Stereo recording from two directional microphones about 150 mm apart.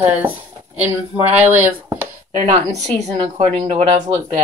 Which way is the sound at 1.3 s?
10° right (ahead or behind).